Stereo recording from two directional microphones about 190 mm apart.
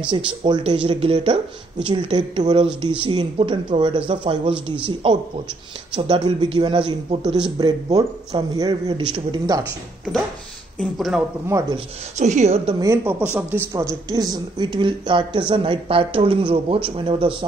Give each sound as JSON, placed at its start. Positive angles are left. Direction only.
{"t": 0.1, "sound": "speech", "side_deg": -25}
{"t": 10.8, "sound": "speech", "side_deg": 0}
{"t": 11.7, "sound": "speech", "side_deg": -35}
{"t": 12.8, "sound": "speech", "side_deg": -15}